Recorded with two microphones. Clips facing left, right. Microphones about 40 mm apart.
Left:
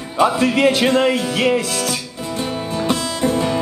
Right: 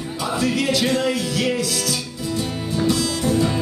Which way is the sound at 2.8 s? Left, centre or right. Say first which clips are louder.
Even; left.